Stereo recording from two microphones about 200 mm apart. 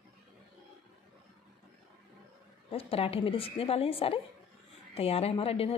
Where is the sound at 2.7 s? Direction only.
30° left (ahead or behind).